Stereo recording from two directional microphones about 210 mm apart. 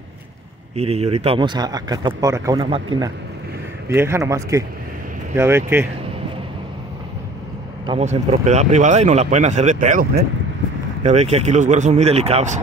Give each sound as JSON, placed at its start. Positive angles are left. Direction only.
{"t": 0.7, "sound": "a man's voice", "side_deg": -30}
{"t": 7.8, "sound": "speech", "side_deg": -30}